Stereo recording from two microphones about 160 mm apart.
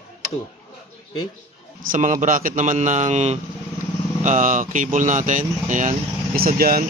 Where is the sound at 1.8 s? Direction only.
55° right (ahead or behind).